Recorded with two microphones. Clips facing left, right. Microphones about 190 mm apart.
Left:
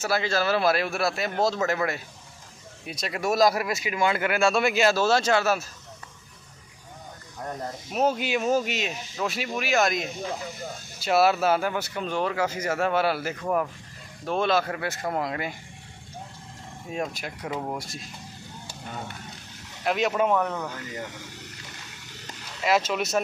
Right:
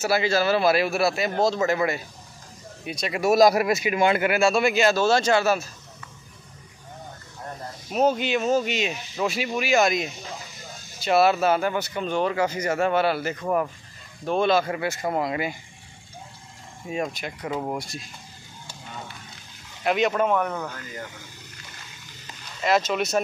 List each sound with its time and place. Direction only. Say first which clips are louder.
0.0 s speech: right 3 dB; 5° right (ahead or behind)
3.1 s speech: right 4 dB; 10° right (ahead or behind)
4.3 s speech: right 2 dB; centre (ahead or behind)
7.9 s speech: right 3 dB; 5° left (ahead or behind)
16.9 s speech: right 2 dB; centre (ahead or behind)
19.8 s speech: right 2 dB; centre (ahead or behind)
22.6 s speech: right 2 dB; 5° left (ahead or behind)